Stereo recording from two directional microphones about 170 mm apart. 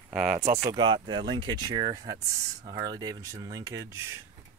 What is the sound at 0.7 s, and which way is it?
Speech, 25° right (ahead or behind).